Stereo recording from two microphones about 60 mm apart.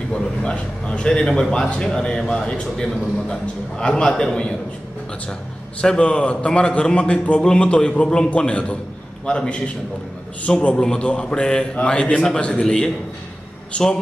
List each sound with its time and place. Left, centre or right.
0.1 s a man's voice: centre
5.8 s a man's voice: centre
10.6 s a man's voice: centre